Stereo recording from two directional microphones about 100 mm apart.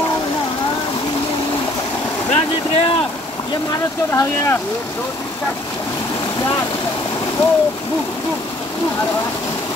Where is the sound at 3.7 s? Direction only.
30° left (ahead or behind).